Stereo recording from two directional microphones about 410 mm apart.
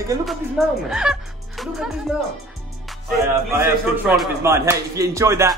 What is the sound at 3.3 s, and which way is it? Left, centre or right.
Speech, centre.